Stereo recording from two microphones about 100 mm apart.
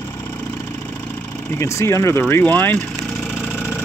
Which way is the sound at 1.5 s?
30° left (ahead or behind).